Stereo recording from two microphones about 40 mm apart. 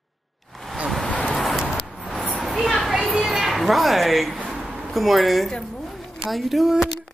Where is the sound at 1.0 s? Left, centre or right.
Left.